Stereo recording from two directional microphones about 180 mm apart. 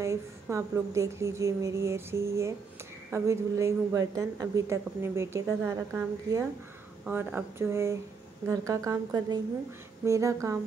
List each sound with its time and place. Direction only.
0.0 s a woman's voice: 15° right (ahead or behind)